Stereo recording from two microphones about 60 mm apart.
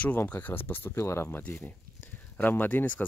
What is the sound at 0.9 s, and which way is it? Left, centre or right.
Speech, left.